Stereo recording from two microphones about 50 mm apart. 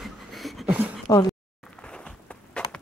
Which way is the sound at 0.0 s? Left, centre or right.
Centre.